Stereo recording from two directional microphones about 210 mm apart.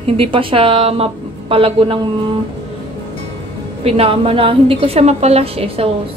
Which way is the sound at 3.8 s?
25° right (ahead or behind).